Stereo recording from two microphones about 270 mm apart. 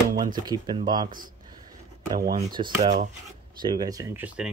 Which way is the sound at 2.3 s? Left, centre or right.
Centre.